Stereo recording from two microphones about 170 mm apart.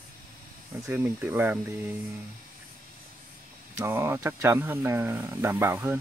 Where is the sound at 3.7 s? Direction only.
15° right (ahead or behind).